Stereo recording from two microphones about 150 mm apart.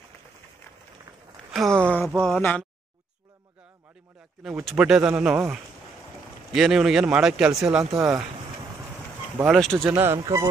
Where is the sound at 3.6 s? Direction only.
5° right (ahead or behind).